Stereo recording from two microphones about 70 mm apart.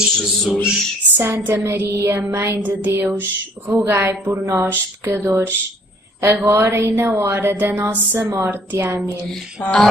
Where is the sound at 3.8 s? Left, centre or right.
Right.